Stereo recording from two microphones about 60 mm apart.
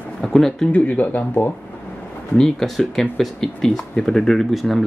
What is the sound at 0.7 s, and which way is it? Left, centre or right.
Speech, left.